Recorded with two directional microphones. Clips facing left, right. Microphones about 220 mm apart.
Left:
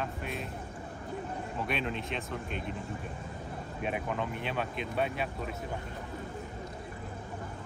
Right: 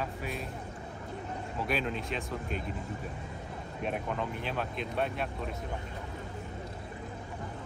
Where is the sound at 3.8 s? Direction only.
Centre (ahead or behind).